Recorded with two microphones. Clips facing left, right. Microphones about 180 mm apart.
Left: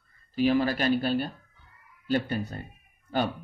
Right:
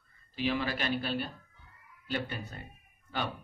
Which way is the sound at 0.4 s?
40° left (ahead or behind).